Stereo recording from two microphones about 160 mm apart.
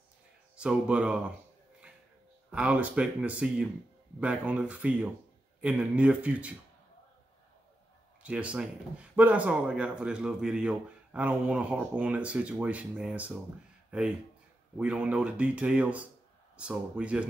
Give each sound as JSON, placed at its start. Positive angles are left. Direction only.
{"t": 0.6, "sound": "speech", "side_deg": -5}
{"t": 2.5, "sound": "speech", "side_deg": -5}
{"t": 8.2, "sound": "speech", "side_deg": -10}